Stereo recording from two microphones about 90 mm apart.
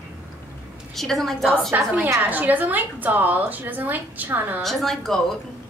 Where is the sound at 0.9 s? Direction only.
5° left (ahead or behind).